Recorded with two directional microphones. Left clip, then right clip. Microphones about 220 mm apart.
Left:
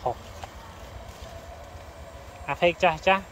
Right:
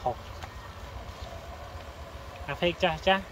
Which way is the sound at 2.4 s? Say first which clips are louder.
Left 6 dB; 10° left (ahead or behind).